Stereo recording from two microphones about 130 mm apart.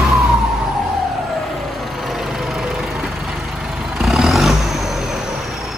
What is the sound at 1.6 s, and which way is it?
Vehicle, centre (ahead or behind).